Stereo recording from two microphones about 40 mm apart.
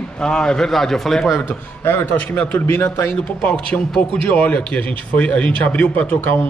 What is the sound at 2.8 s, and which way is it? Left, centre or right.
Speech, left.